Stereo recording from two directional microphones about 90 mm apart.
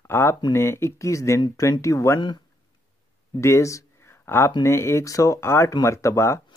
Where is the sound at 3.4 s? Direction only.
35° left (ahead or behind).